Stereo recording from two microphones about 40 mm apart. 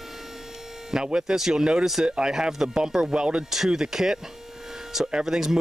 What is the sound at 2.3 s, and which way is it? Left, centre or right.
Speech, centre.